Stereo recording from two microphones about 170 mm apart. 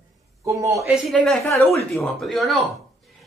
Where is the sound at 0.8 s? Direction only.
Centre (ahead or behind).